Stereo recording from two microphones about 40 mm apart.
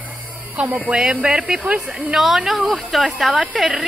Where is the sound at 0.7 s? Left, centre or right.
Right.